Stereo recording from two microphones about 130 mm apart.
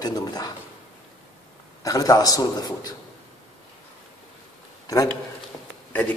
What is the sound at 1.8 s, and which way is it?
A man's voice, 25° left (ahead or behind).